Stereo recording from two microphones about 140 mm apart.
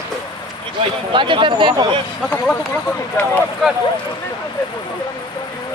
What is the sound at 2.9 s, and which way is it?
Speech, 15° left (ahead or behind).